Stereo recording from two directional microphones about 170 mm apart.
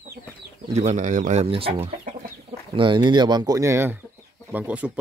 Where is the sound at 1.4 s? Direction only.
35° right (ahead or behind).